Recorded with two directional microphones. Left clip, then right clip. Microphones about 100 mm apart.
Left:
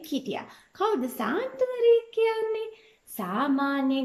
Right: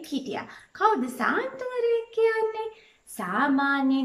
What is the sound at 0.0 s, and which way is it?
A woman's voice, 30° left (ahead or behind).